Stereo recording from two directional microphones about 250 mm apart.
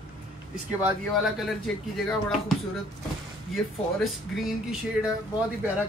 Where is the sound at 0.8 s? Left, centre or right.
Centre.